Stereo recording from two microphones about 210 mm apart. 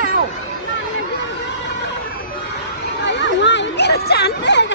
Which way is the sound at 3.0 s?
55° left (ahead or behind).